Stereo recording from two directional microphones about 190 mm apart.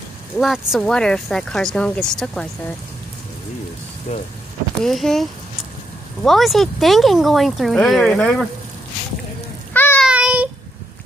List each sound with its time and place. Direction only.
0.4 s speech: centre (ahead or behind)
4.1 s speech: 35° left (ahead or behind)
4.8 s speech: centre (ahead or behind)
6.2 s speech: centre (ahead or behind)
9.8 s child singing: 10° left (ahead or behind)
10.0 s child singing: 5° right (ahead or behind)